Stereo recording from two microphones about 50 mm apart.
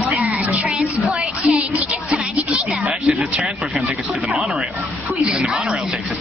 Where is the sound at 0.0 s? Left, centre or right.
Right.